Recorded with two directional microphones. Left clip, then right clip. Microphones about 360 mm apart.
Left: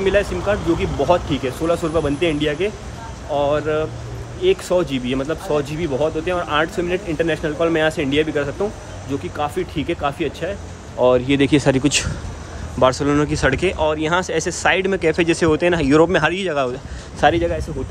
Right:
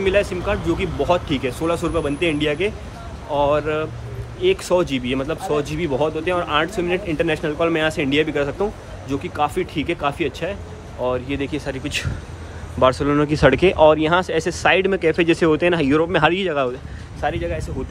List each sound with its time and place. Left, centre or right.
0.0 s speech: centre
11.0 s speech: left; by 17.6 s centre